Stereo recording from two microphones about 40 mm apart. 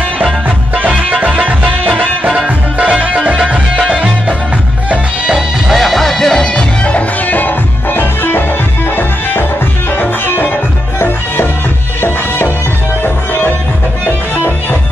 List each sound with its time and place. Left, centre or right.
2.8 s music: right
5.7 s music: centre
6.4 s music: left
7.2 s music: left
13.0 s music: left